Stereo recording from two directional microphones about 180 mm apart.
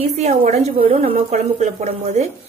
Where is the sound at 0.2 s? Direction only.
35° right (ahead or behind).